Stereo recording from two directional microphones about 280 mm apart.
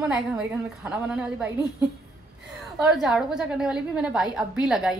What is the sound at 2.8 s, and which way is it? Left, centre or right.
A woman's voice, centre.